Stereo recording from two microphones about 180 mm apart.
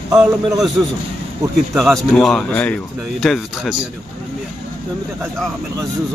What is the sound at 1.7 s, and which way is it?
A man's voice, centre (ahead or behind).